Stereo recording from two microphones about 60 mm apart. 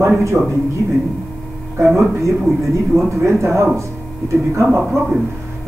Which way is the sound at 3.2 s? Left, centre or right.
Right.